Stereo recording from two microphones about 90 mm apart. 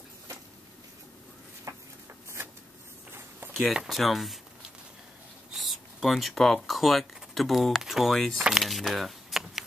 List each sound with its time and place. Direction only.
1.7 s a sound: 35° right (ahead or behind)
3.5 s speech: 5° right (ahead or behind)
5.5 s speech: centre (ahead or behind)
8.5 s keys jangling: centre (ahead or behind)